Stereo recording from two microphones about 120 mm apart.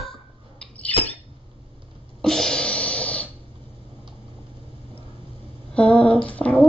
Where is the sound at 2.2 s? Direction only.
5° left (ahead or behind).